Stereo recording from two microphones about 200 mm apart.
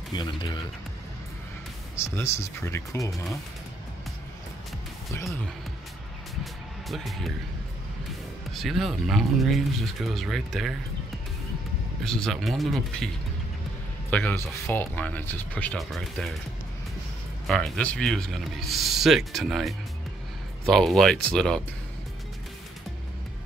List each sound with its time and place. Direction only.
0.1 s speech: 25° left (ahead or behind)
2.0 s speech: 15° left (ahead or behind)
6.4 s music: centre (ahead or behind)
8.5 s speech: centre (ahead or behind)
12.0 s speech: centre (ahead or behind)
14.1 s speech: 10° left (ahead or behind)
17.5 s speech: 5° left (ahead or behind)